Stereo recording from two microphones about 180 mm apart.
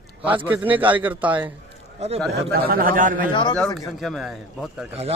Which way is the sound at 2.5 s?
55° right (ahead or behind).